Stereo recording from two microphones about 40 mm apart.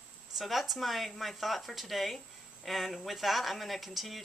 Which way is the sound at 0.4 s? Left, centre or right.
Centre.